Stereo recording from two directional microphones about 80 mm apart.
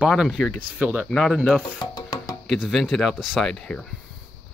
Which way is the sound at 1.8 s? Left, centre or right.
Left.